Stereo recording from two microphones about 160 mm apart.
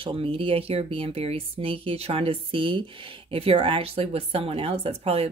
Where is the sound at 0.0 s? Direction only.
35° right (ahead or behind).